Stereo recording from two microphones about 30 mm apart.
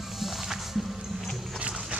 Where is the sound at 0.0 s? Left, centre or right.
Centre.